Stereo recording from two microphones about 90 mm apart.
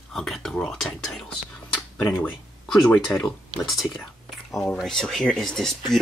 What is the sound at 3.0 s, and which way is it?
Speech, centre (ahead or behind).